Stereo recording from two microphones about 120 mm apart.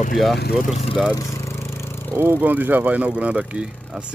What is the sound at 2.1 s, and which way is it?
Speech, 20° right (ahead or behind).